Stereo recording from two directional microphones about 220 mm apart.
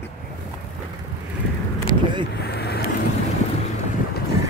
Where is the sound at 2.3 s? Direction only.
50° left (ahead or behind).